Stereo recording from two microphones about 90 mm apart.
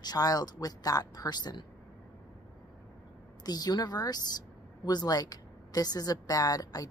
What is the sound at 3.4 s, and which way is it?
A woman's voice, 45° left (ahead or behind).